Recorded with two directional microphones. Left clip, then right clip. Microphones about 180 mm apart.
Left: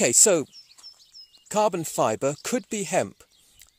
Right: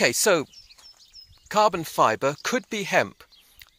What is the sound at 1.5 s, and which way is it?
Speech, 50° left (ahead or behind).